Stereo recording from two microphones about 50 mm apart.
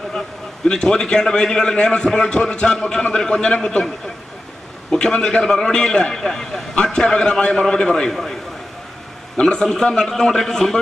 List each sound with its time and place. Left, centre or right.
0.7 s a man's voice: centre
4.9 s a man's voice: centre
8.1 s a man's voice: centre
9.4 s a man's voice: centre